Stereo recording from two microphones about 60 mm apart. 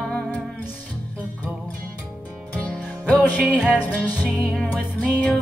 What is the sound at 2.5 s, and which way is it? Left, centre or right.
Music, left.